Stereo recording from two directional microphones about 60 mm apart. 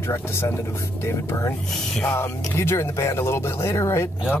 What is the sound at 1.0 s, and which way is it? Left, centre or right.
Speech, left.